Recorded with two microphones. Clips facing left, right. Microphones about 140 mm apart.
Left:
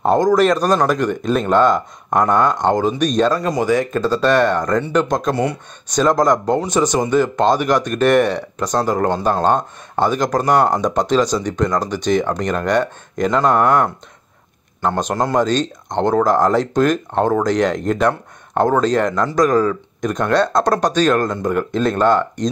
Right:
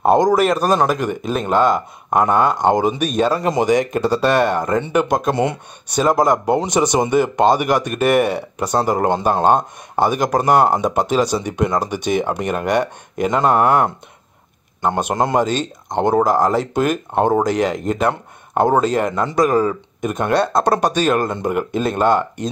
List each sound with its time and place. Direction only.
0.0 s a man's voice: 10° right (ahead or behind)
3.3 s speech: 20° right (ahead or behind)
5.3 s speech: 20° right (ahead or behind)
5.9 s speech: 10° right (ahead or behind)